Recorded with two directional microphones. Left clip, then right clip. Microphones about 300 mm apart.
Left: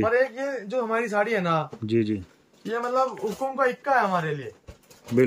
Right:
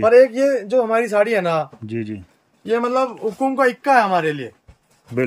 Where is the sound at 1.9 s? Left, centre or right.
Centre.